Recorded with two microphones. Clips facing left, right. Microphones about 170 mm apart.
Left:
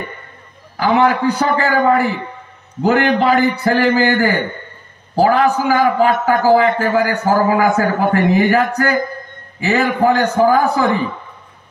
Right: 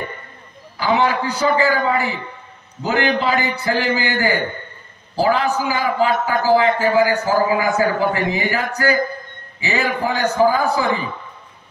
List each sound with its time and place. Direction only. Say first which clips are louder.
0.7 s a man's voice: left 4 dB; 55° left (ahead or behind)